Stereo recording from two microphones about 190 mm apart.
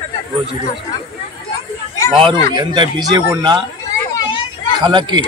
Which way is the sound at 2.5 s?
20° right (ahead or behind).